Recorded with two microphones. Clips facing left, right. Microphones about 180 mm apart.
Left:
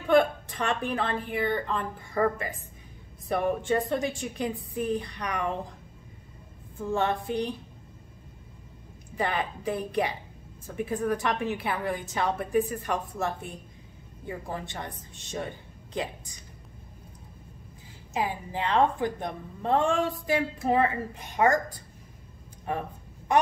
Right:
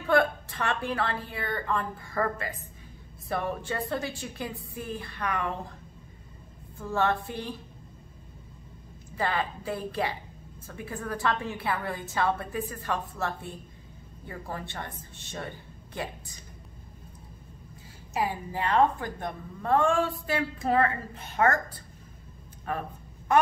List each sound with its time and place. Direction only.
0.1 s a woman's voice: 20° left (ahead or behind)
6.9 s a woman's voice: 15° left (ahead or behind)
9.1 s a woman's voice: 20° left (ahead or behind)
18.1 s a woman's voice: 20° left (ahead or behind)